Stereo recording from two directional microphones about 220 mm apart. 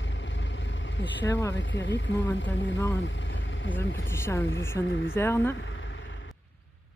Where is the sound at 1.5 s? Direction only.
55° left (ahead or behind).